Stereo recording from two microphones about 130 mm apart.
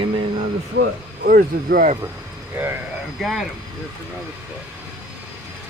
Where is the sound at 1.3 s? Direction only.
90° right.